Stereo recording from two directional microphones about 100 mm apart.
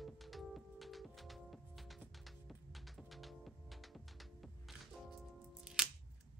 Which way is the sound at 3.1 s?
Centre (ahead or behind).